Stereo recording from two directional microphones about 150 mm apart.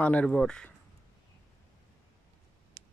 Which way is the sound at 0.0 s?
10° left (ahead or behind).